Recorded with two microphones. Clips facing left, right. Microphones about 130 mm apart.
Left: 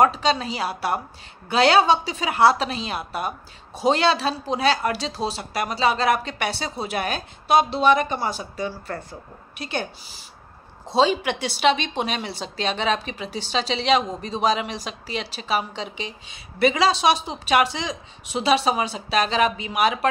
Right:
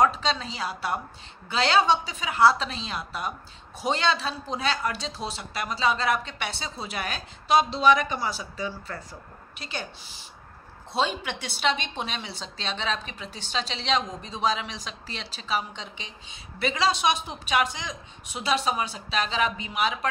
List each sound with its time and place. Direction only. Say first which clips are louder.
0.0 s a woman's voice: left 4 dB; 70° left (ahead or behind)
3.9 s speech: left 4 dB; 70° left (ahead or behind)
11.0 s a woman's voice: left 8 dB; 80° left
17.0 s a woman's voice: left 5 dB; 85° left; by 20.1 s 70° left (ahead or behind)